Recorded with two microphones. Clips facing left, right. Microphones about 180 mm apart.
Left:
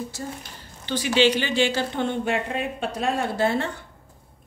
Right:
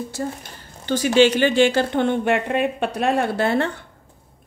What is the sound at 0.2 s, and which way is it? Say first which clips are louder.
Speech: right 9 dB; 60° right (ahead or behind).